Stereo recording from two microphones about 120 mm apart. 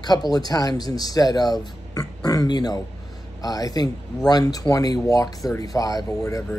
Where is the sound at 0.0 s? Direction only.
35° left (ahead or behind).